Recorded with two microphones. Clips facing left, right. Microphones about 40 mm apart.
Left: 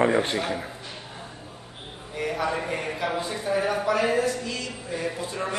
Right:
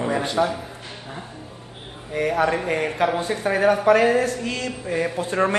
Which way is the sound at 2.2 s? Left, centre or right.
Right.